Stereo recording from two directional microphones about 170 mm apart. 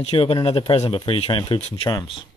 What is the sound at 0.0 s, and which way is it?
Speech, 35° left (ahead or behind).